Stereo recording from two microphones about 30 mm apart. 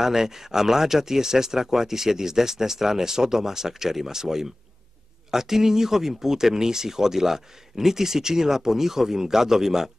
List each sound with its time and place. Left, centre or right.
0.0 s speech: centre